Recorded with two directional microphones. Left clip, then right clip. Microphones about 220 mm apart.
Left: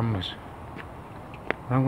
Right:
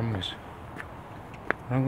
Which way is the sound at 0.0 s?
5° left (ahead or behind).